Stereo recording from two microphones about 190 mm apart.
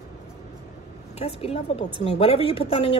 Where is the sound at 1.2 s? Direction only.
30° left (ahead or behind).